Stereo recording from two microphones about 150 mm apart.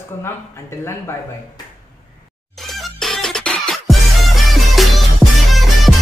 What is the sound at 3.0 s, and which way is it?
Music, 5° left (ahead or behind).